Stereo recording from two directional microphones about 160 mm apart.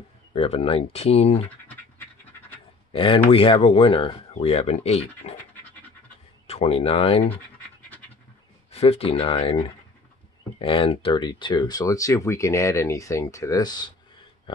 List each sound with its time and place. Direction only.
0.3 s speech: 35° left (ahead or behind)
2.9 s speech: 35° left (ahead or behind)
6.4 s speech: 40° left (ahead or behind)
8.7 s speech: 40° left (ahead or behind)